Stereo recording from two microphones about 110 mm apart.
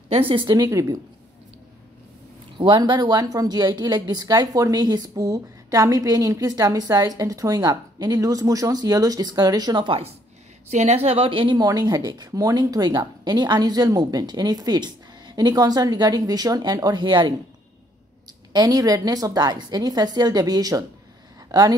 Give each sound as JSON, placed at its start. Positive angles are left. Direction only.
{"t": 0.3, "sound": "a woman's voice", "side_deg": -50}
{"t": 0.6, "sound": "a woman's voice", "side_deg": -30}
{"t": 2.5, "sound": "a woman's voice", "side_deg": -45}
{"t": 10.7, "sound": "a woman's voice", "side_deg": -80}
{"t": 11.5, "sound": "a woman's voice", "side_deg": -35}
{"t": 18.5, "sound": "a woman's voice", "side_deg": -35}